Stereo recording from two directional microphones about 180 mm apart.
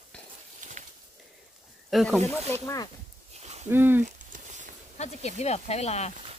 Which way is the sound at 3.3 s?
40° right (ahead or behind).